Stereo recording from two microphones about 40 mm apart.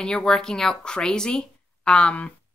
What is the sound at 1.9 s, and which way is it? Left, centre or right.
Speech, left.